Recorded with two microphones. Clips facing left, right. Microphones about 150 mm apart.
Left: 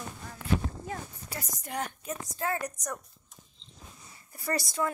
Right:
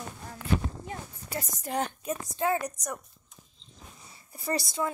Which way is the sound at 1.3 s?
25° right (ahead or behind).